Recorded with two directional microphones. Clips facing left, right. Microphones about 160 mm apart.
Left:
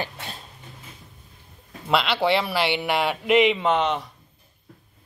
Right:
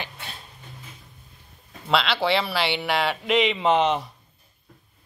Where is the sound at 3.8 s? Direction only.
10° right (ahead or behind).